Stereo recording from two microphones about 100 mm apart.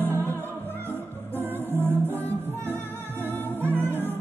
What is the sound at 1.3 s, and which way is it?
Music, 20° right (ahead or behind).